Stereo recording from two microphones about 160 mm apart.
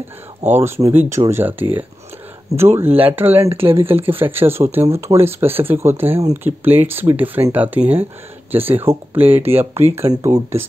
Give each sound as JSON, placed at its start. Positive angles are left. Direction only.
{"t": 0.6, "sound": "speech", "side_deg": -15}
{"t": 3.4, "sound": "speech", "side_deg": -35}
{"t": 3.7, "sound": "speech", "side_deg": -15}